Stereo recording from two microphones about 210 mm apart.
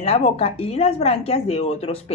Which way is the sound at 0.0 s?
30° left (ahead or behind).